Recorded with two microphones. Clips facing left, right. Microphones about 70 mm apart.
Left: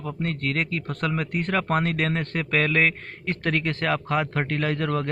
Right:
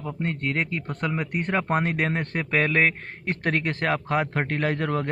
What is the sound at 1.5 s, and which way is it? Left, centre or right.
A man's voice, right.